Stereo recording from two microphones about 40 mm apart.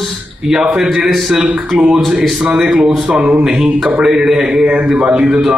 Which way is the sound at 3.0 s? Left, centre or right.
Right.